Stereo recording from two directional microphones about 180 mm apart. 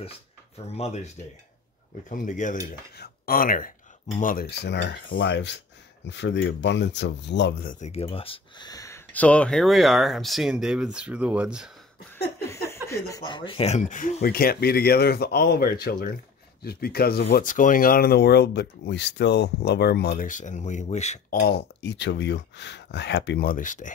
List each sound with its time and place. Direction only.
0.7 s speech: 35° left (ahead or behind)
2.0 s cutlery: 45° left (ahead or behind)
3.0 s speech: 55° left (ahead or behind); by 7.7 s 70° left (ahead or behind)
7.8 s speech: 35° left (ahead or behind); by 11.7 s 5° right (ahead or behind)
12.8 s speech: 15° left (ahead or behind); by 17.5 s 60° left (ahead or behind)
17.5 s speech: 45° left (ahead or behind)